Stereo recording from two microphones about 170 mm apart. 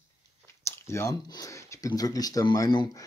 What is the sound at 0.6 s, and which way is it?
Speech, 15° left (ahead or behind).